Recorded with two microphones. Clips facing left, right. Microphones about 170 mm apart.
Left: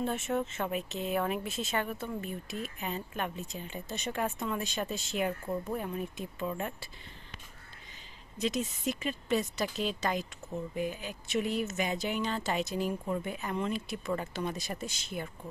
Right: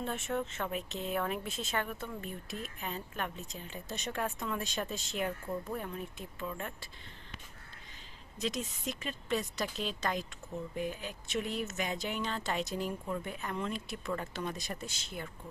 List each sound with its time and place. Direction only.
0.0 s speech: 5° left (ahead or behind)
8.4 s speech: 5° left (ahead or behind)